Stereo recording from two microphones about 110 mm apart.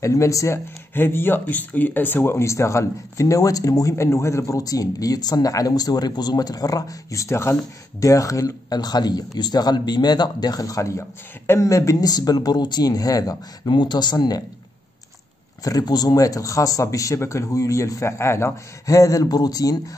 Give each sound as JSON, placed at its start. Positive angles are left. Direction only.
{"t": 0.0, "sound": "a man's voice", "side_deg": 30}
{"t": 15.6, "sound": "a man's voice", "side_deg": 35}